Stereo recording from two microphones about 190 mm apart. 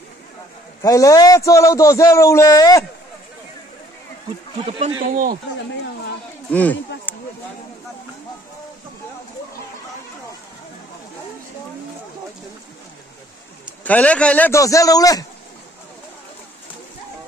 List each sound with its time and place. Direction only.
0.8 s a man's voice: 20° left (ahead or behind)
4.6 s speech: 30° right (ahead or behind)
5.1 s a man's voice: 45° right (ahead or behind)
6.5 s a man's voice: 10° left (ahead or behind)
13.8 s a man's voice: 5° left (ahead or behind)